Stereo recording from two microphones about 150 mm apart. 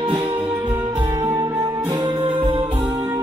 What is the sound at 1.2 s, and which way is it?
Music, 25° right (ahead or behind).